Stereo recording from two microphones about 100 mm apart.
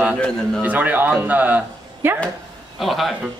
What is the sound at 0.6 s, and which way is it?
Speech, 15° right (ahead or behind).